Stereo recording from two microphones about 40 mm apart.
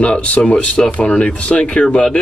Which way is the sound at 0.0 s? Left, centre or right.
Left.